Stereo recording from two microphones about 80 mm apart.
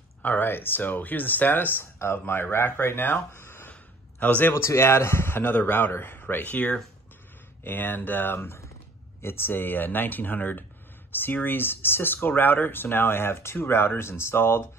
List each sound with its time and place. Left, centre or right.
0.2 s speech: left
4.6 s speech: left